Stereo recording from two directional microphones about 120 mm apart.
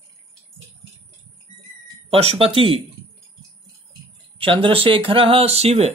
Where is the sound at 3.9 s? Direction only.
45° right (ahead or behind).